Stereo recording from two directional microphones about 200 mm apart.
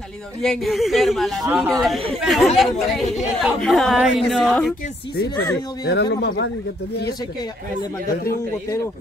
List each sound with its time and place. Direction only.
0.4 s speech: centre (ahead or behind)
5.9 s speech: 55° left (ahead or behind)